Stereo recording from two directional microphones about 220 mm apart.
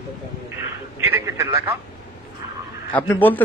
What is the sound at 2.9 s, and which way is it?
Speech, 10° left (ahead or behind).